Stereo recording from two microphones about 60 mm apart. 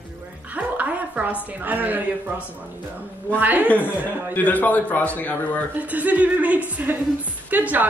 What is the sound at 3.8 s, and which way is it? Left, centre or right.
A man's voice, left.